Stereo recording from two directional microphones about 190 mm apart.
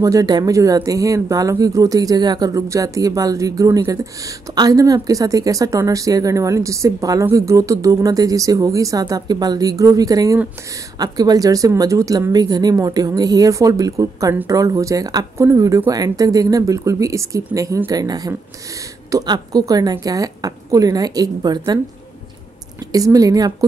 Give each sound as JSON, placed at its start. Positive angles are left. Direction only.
{"t": 0.0, "sound": "a woman's voice", "side_deg": -20}
{"t": 22.9, "sound": "a woman's voice", "side_deg": -20}